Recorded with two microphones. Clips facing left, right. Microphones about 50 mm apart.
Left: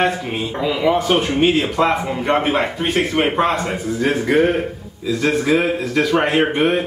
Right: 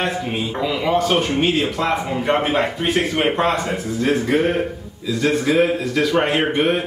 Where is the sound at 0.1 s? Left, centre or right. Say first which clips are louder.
Even; centre.